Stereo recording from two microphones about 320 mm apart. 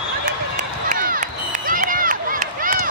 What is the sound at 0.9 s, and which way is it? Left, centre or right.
Crowd, right.